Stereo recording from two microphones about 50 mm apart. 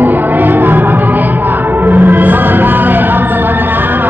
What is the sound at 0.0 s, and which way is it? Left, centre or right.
Music, right.